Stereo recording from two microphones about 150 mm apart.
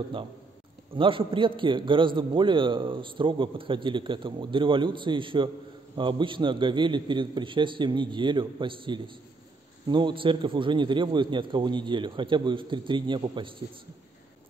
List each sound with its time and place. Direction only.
0.9 s a man's voice: 35° right (ahead or behind)